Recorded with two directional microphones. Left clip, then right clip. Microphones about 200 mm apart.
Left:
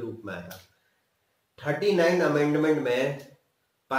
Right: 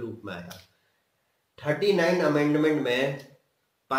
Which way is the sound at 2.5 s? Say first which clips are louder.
Even; 20° right (ahead or behind).